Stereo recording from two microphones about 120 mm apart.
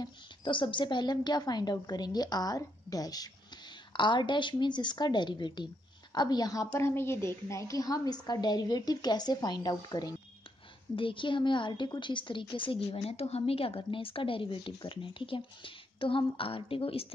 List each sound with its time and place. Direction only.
0.0 s a woman's voice: 45° left (ahead or behind)